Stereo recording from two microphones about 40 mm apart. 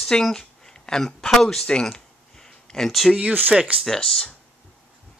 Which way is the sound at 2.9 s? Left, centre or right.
Centre.